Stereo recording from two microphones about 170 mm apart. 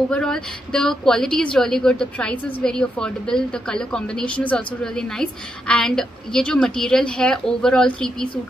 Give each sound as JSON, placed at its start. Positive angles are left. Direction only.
{"t": 0.1, "sound": "a woman's voice", "side_deg": 5}